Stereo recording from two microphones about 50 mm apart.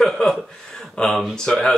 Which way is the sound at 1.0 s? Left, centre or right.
Centre.